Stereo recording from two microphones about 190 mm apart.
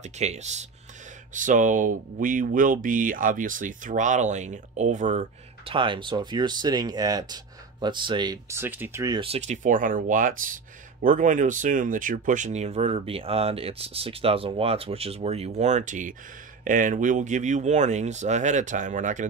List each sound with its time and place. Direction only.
0.0 s speech: 35° right (ahead or behind); by 9.2 s 15° right (ahead or behind)
9.2 s speech: 35° right (ahead or behind)